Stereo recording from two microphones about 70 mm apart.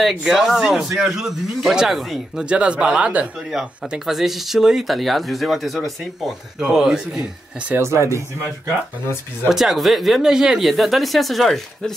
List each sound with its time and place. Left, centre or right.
0.2 s speech: centre
2.4 s speech: centre
3.5 s speech: centre
7.8 s speech: right
9.5 s speech: centre